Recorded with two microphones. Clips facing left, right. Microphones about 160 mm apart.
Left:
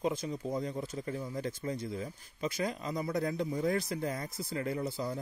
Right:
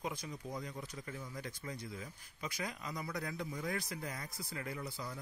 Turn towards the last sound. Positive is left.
turn(degrees=30)  # may be behind; listen again after turning